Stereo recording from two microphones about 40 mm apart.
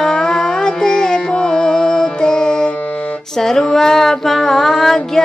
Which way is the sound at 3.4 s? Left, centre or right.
Centre.